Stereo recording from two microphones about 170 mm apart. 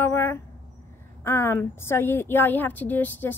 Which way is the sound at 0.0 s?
15° left (ahead or behind).